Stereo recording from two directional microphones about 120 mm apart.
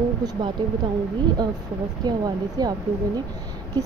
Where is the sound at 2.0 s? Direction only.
35° right (ahead or behind).